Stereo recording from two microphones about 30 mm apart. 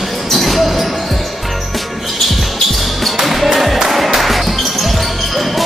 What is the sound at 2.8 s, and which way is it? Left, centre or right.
Music, centre.